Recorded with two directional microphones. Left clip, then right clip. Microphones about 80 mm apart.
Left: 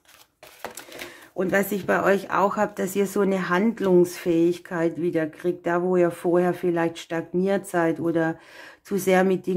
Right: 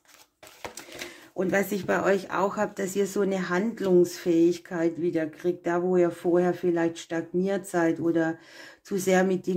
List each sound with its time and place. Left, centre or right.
1.3 s speech: left